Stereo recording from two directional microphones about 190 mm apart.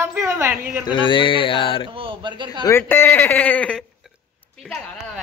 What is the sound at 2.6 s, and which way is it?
Speech, 10° left (ahead or behind).